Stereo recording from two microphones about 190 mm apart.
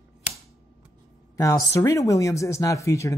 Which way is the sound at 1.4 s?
15° left (ahead or behind).